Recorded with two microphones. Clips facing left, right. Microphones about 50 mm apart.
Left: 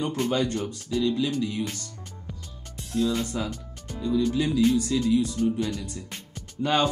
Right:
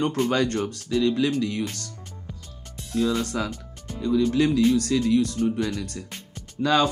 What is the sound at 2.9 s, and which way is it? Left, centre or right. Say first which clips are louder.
Speech: right 2 dB; right.